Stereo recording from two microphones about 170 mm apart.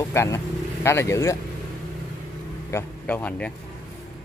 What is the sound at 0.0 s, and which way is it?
A man's voice, 15° left (ahead or behind).